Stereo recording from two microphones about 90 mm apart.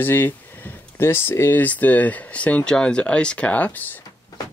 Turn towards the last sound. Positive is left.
turn(degrees=20)  # may be behind; listen again after turning